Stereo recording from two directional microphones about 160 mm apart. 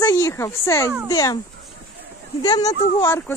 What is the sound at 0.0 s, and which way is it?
Speech, 20° left (ahead or behind).